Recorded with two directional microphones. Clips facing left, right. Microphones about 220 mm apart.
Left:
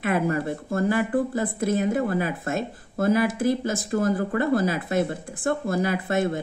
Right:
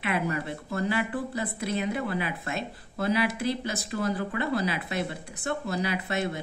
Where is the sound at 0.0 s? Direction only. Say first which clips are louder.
Left 6 dB; 45° left (ahead or behind).